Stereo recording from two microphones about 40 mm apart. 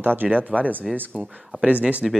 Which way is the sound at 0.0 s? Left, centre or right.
Right.